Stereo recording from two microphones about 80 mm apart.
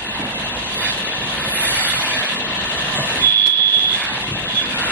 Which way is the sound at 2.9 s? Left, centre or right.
Left.